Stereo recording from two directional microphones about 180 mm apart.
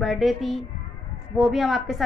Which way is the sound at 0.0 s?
Centre (ahead or behind).